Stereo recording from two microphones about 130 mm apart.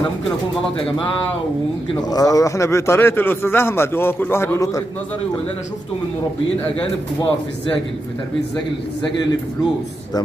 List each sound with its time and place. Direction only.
2.0 s a man's voice: 30° left (ahead or behind)